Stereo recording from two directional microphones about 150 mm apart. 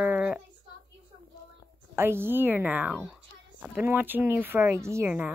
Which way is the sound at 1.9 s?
15° right (ahead or behind).